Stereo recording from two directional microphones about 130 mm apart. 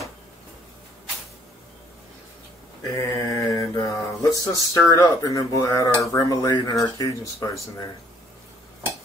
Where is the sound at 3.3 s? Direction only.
25° left (ahead or behind).